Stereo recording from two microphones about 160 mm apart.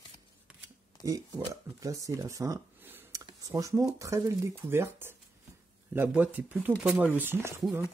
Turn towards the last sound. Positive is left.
turn(degrees=-15)  # may be behind; listen again after turning